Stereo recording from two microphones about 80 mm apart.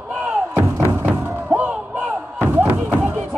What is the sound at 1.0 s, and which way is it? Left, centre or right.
Thump, centre.